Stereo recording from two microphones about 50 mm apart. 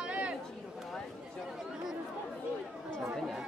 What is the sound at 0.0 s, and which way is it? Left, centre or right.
Chatter, right.